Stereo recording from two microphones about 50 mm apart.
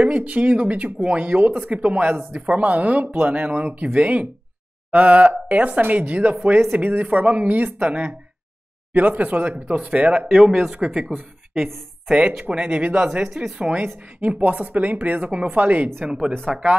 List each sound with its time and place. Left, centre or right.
0.0 s a woman's voice: right
11.1 s speech: centre
12.1 s a woman's voice: right
13.3 s speech: centre
13.9 s a woman's voice: right